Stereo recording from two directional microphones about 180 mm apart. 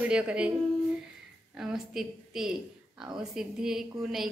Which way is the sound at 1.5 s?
5° right (ahead or behind).